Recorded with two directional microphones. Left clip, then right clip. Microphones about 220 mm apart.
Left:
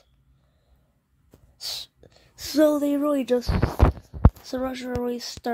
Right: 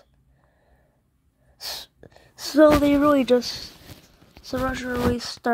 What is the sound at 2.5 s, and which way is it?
A woman's voice, 5° right (ahead or behind).